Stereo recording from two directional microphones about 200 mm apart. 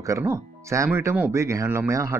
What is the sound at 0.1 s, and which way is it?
Speech, 15° right (ahead or behind).